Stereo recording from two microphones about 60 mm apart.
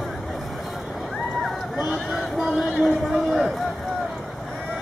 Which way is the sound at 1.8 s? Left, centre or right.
Centre.